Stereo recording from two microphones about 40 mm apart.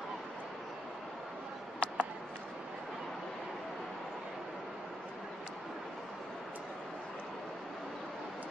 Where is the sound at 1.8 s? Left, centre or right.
Left.